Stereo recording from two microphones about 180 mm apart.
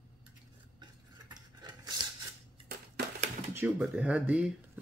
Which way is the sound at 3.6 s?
5° right (ahead or behind).